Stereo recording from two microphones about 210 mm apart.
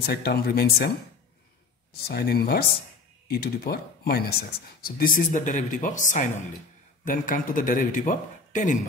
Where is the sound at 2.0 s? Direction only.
50° left (ahead or behind).